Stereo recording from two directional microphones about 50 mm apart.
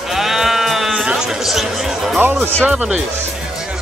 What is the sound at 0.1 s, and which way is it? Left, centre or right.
Sheep, centre.